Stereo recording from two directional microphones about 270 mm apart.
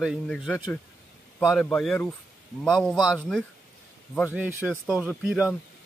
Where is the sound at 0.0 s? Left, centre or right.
Centre.